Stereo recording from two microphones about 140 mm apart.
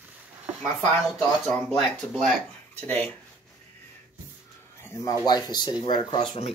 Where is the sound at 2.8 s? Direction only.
15° left (ahead or behind).